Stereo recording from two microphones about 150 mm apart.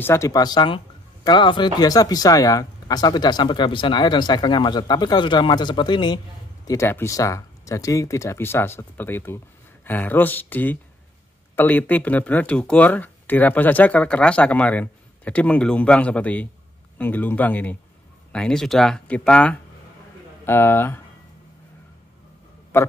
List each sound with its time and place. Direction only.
0.0 s speech: 20° left (ahead or behind)
6.7 s speech: 20° left (ahead or behind)
22.7 s speech: 15° left (ahead or behind)